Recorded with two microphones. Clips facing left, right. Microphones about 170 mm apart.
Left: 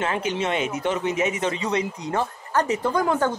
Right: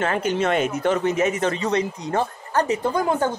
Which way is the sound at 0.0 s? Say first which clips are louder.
Right 3 dB; 50° right (ahead or behind).